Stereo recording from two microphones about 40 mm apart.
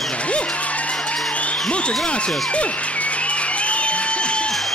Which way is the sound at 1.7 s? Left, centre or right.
Left.